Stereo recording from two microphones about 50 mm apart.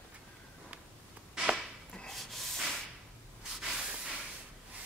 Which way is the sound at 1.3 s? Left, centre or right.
Centre.